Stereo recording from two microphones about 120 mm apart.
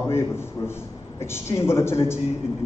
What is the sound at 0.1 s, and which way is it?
A man's voice, 20° left (ahead or behind).